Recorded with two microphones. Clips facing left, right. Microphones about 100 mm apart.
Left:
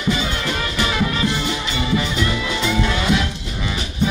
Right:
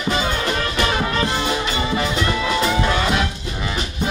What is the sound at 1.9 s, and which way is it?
Music, 40° right (ahead or behind).